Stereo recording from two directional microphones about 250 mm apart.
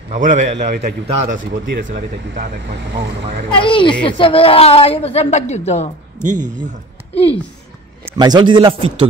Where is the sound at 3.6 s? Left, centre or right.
Centre.